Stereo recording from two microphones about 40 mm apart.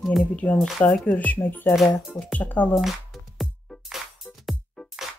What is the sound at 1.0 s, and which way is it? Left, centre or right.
Speech, left.